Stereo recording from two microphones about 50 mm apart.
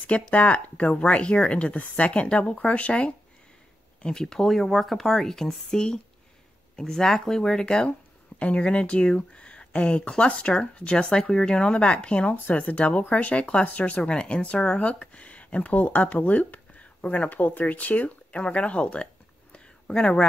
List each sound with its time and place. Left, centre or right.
0.3 s speech: left
4.0 s speech: centre
19.5 s a sound: centre